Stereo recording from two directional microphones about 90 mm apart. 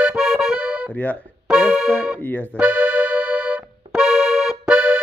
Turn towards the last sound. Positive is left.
turn(degrees=-5)  # may be behind; listen again after turning